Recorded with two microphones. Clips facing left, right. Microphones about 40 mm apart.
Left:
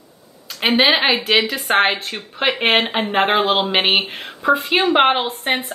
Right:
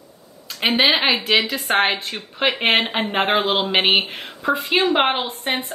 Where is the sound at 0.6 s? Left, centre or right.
Centre.